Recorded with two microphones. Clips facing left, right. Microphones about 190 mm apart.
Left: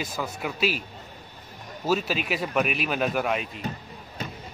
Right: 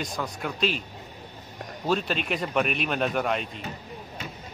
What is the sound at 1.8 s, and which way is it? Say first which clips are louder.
Speech: left 1 dB; 5° left (ahead or behind).